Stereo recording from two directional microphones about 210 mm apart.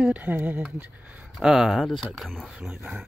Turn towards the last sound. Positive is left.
turn(degrees=-5)  # may be behind; listen again after turning